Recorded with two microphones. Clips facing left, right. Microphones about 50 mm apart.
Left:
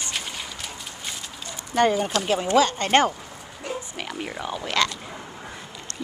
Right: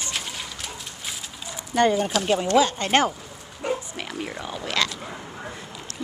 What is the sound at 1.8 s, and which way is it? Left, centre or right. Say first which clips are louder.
Speech: even; centre.